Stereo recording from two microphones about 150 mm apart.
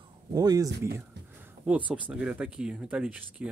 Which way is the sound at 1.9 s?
10° right (ahead or behind).